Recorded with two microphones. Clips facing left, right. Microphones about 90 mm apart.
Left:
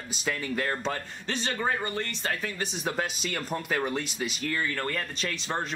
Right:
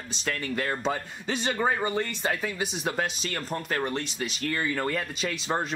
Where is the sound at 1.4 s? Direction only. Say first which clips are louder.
Right 3 dB; 15° right (ahead or behind).